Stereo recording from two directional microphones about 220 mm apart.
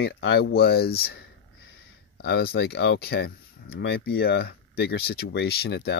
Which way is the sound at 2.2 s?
45° left (ahead or behind).